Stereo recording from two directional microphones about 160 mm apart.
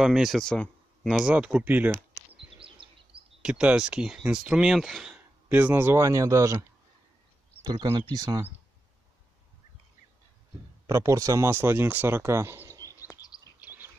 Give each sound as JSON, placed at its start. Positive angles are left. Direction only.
{"t": 0.0, "sound": "speech", "side_deg": -5}
{"t": 2.3, "sound": "a sound", "side_deg": -35}
{"t": 3.4, "sound": "speech", "side_deg": -5}
{"t": 5.1, "sound": "speech", "side_deg": -10}
{"t": 7.6, "sound": "speech", "side_deg": -25}
{"t": 10.9, "sound": "speech", "side_deg": -20}
{"t": 12.9, "sound": "a sound", "side_deg": 20}